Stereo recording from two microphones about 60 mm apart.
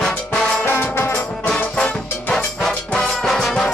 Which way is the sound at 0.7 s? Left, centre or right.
Left.